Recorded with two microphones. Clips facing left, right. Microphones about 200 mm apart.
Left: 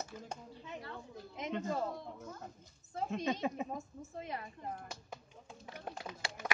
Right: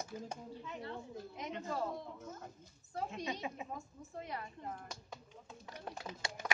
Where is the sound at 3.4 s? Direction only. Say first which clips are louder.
Left 6 dB; 45° left (ahead or behind).